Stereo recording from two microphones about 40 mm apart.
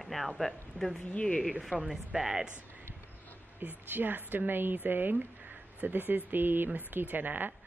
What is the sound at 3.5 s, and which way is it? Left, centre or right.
Speech, right.